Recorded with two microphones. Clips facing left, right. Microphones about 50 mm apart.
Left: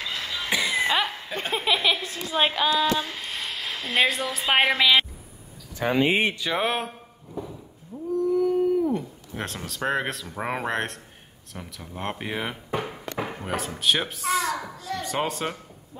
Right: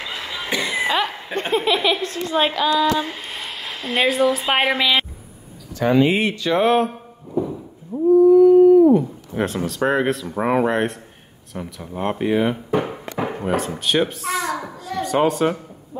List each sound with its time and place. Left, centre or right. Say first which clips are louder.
0.0 s a sound: right 2 dB; centre
0.6 s cough: right 3 dB; centre
1.5 s speech: right 5 dB; centre
2.5 s child singing: right 4 dB; centre
2.9 s speech: right 5 dB; centre
6.0 s speech: right 3 dB; left
6.4 s speech: right 9 dB; centre
7.3 s a sound: right 12 dB; right
8.1 s a sound: right 12 dB; centre
8.9 s speech: right 11 dB; centre
12.7 s a sound: right 7 dB; centre
13.6 s a woman's voice: right 3 dB; centre